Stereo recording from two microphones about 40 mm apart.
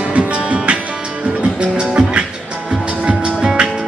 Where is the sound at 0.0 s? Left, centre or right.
Right.